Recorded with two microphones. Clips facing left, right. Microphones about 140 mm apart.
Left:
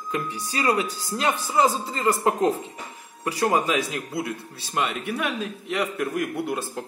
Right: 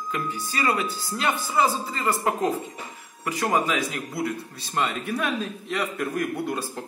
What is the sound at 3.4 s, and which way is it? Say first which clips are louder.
A man's voice: left 2 dB; 10° left (ahead or behind).